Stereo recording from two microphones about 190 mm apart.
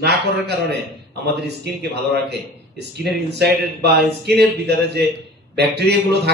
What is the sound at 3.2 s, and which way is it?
Speech, 60° right (ahead or behind).